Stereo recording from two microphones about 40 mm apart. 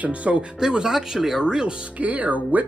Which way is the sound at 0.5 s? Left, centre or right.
Centre.